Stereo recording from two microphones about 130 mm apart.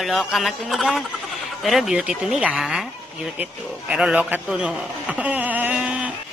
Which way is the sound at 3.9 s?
5° right (ahead or behind).